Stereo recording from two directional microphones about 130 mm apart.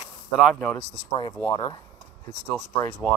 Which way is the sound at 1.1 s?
30° left (ahead or behind).